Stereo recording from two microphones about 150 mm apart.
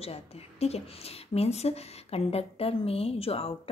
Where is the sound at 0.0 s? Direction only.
45° left (ahead or behind).